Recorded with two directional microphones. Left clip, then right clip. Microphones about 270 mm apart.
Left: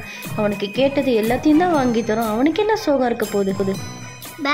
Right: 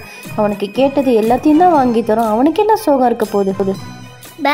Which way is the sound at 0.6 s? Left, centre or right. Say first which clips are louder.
Right 3 dB; centre.